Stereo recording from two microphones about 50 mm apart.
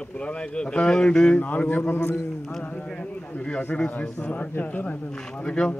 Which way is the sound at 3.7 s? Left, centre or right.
Left.